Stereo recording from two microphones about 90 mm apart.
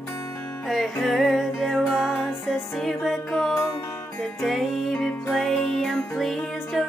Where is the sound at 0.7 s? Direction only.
Centre (ahead or behind).